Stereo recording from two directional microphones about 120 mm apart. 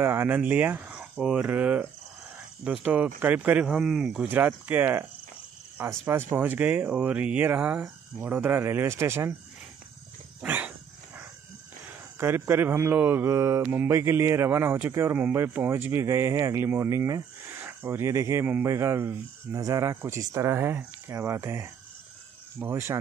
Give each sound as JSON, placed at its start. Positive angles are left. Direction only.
{"t": 0.0, "sound": "speech", "side_deg": -20}
{"t": 4.3, "sound": "speech", "side_deg": -15}
{"t": 10.4, "sound": "a sound", "side_deg": -15}
{"t": 12.2, "sound": "speech", "side_deg": -20}